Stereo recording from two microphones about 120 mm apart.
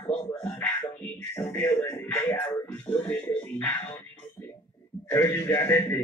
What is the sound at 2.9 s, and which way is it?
Music, 55° left (ahead or behind).